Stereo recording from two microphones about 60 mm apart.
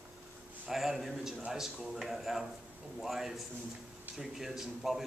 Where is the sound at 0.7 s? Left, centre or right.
Centre.